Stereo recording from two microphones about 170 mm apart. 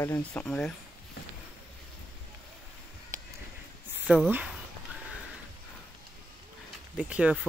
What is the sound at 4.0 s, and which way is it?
Speech, 10° right (ahead or behind).